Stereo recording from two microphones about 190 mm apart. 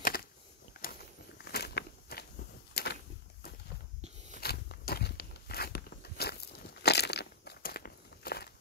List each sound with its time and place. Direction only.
0.0 s a sound: 50° left (ahead or behind)
1.4 s walk: 55° left (ahead or behind)
4.4 s walk: 55° left (ahead or behind)